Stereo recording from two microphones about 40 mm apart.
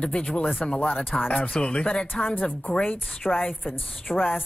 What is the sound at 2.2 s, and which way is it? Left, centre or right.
Speech, left.